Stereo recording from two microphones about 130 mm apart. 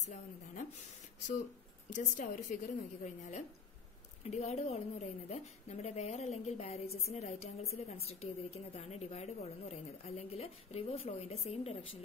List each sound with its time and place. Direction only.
1.9 s a woman's voice: 70° left (ahead or behind); by 12.0 s 45° left (ahead or behind)